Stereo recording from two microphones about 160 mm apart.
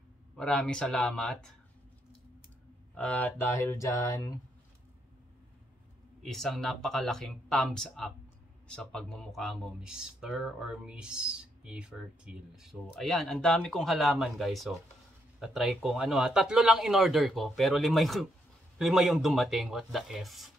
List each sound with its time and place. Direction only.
0.4 s speech: 5° left (ahead or behind)
2.9 s a sound: 10° left (ahead or behind)
6.2 s speech: centre (ahead or behind)